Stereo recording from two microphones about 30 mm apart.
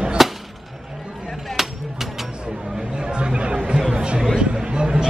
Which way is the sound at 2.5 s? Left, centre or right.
Right.